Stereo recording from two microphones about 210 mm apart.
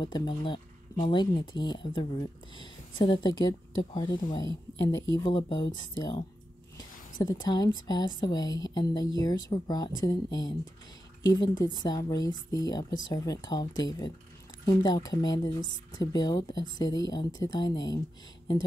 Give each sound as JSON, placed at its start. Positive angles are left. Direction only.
{"t": 0.0, "sound": "speech", "side_deg": 20}
{"t": 7.2, "sound": "speech", "side_deg": 20}
{"t": 11.6, "sound": "speech", "side_deg": 20}